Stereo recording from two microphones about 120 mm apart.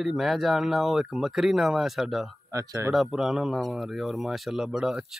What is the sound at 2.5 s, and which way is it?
Speech, 25° right (ahead or behind).